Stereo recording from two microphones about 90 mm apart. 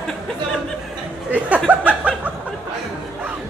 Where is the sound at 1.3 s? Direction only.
15° right (ahead or behind).